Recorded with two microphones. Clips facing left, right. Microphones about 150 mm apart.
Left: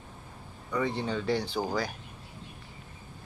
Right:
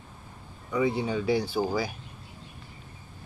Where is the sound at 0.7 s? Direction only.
10° right (ahead or behind).